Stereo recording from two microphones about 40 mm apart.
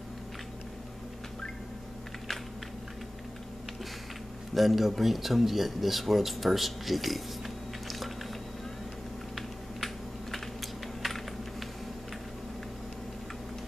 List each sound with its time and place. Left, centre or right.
4.6 s speech: centre
11.0 s typing: centre